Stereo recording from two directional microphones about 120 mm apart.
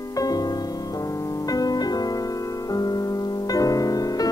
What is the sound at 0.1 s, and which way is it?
Music, 30° left (ahead or behind).